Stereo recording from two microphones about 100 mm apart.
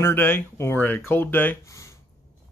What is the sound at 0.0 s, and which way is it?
Speech, 20° left (ahead or behind).